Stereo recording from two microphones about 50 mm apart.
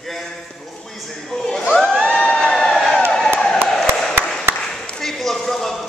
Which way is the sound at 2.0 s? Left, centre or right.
Left.